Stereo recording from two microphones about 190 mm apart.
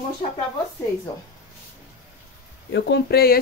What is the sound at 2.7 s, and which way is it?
Speech, 60° left (ahead or behind).